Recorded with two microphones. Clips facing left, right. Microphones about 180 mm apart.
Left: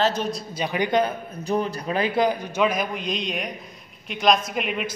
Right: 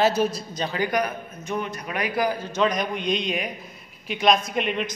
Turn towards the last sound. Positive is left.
turn(degrees=5)  # may be behind; listen again after turning